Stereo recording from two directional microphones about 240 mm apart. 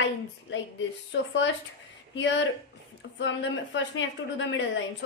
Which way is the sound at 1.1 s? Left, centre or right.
Left.